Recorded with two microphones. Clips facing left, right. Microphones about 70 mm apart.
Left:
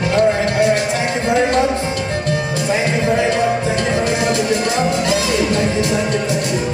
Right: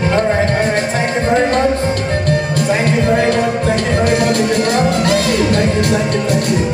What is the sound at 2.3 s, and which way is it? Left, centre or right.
Music, right.